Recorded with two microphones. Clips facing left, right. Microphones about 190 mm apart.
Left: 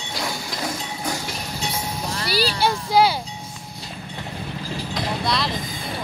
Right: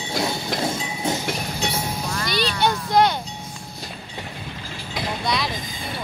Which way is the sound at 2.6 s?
5° left (ahead or behind).